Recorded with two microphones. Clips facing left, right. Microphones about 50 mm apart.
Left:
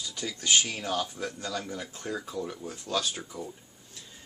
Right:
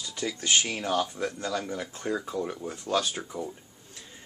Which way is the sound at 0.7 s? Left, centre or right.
Centre.